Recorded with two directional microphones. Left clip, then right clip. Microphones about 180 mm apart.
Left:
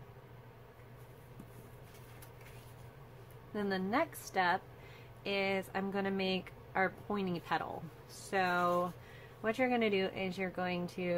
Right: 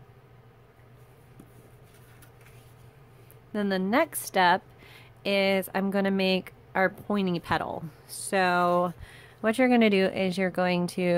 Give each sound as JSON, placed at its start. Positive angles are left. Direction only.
{"t": 3.5, "sound": "a woman's voice", "side_deg": -50}